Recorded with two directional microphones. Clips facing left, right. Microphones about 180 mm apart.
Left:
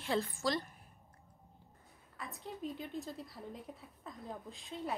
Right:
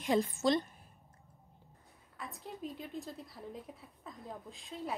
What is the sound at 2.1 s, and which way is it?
A woman's voice, centre (ahead or behind).